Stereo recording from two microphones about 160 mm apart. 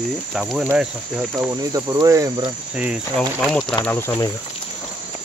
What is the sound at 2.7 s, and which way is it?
Speech, 5° right (ahead or behind).